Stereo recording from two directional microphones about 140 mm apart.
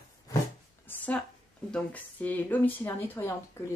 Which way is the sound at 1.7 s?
10° left (ahead or behind).